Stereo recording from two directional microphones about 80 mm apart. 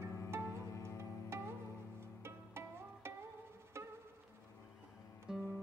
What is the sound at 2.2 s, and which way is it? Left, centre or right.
Music, right.